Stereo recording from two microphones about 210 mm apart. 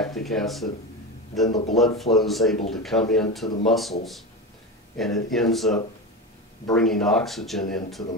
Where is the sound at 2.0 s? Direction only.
Centre (ahead or behind).